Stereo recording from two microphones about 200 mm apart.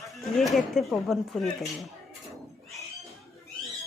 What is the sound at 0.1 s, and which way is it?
Speech, centre (ahead or behind).